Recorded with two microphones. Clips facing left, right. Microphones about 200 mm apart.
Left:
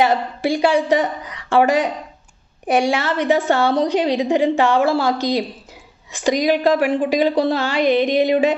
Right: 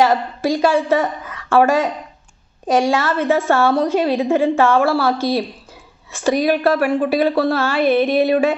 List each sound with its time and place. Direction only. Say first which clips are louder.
0.0 s a woman's voice: right 1 dB; 15° left (ahead or behind)